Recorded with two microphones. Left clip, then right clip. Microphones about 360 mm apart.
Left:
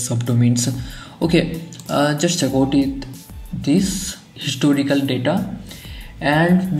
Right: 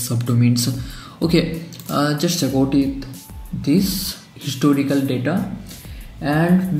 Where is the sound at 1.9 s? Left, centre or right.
Centre.